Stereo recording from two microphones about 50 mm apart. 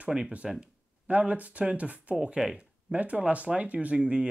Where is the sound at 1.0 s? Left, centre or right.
Right.